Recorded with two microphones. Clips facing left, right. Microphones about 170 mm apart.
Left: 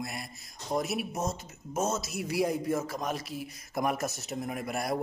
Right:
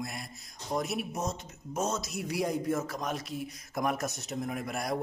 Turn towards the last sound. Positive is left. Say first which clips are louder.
# left 1 dB
turn(degrees=5)  # may be behind; listen again after turning